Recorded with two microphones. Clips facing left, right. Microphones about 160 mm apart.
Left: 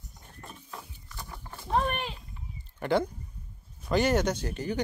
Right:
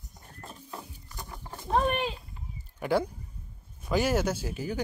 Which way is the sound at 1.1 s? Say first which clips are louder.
Right 1 dB; 15° right (ahead or behind).